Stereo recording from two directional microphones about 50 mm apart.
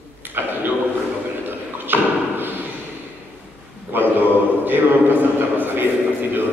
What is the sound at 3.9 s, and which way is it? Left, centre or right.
A man's voice, right.